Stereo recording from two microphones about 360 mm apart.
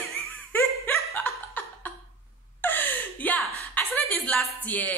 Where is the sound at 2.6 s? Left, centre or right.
Centre.